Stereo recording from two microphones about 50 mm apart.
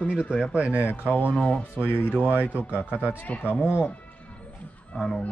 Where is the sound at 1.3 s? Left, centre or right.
Centre.